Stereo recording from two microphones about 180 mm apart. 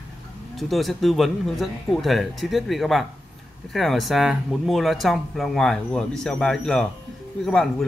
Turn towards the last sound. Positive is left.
turn(degrees=0)  # may be behind; listen again after turning